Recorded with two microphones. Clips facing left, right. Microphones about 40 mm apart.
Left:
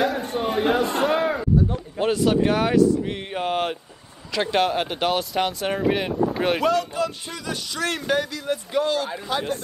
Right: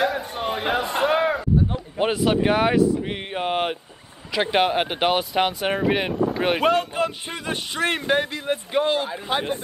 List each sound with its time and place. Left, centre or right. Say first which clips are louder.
0.0 s a man's voice: left 1 dB; centre
6.6 s speech: right 1 dB; right